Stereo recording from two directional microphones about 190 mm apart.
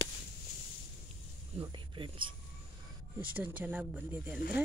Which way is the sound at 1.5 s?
25° right (ahead or behind).